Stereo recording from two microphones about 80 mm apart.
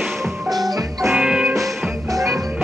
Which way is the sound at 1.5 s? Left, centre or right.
Centre.